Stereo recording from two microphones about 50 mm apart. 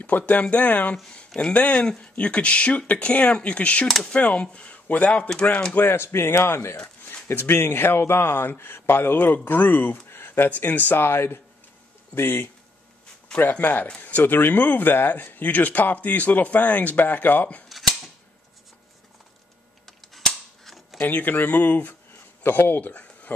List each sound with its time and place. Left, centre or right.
0.3 s speech: left
1.1 s speech: centre
2.1 s speech: left
5.8 s speech: left
13.4 s speech: left
17.6 s cap gun: centre
19.9 s cap gun: centre
21.0 s speech: left